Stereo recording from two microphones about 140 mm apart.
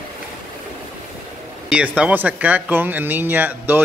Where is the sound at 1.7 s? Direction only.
10° right (ahead or behind).